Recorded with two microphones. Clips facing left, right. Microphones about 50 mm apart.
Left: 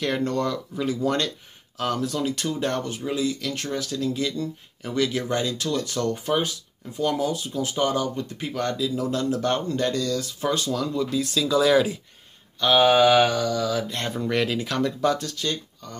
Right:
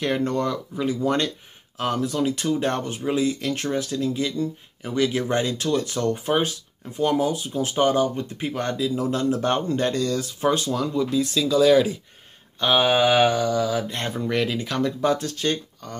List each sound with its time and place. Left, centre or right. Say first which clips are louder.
0.0 s speech: right 1 dB; centre
5.3 s speech: right 3 dB; right; by 12.0 s centre
12.5 s speech: left 2 dB; centre
14.1 s speech: even; centre
15.2 s speech: right 4 dB; right